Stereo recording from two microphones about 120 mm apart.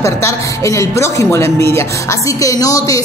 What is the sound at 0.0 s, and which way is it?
Speech, 25° left (ahead or behind).